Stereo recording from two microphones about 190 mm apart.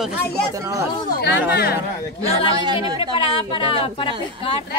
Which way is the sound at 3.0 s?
30° left (ahead or behind).